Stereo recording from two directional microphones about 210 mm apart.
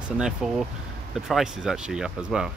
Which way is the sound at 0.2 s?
5° right (ahead or behind).